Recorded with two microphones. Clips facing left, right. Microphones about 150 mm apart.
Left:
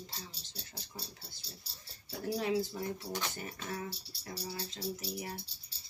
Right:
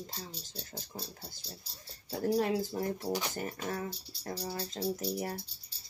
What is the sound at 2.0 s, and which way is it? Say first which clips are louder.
Music: right 5 dB; 45° right (ahead or behind).